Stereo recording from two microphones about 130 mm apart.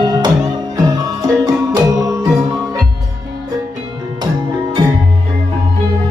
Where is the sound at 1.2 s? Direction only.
25° right (ahead or behind).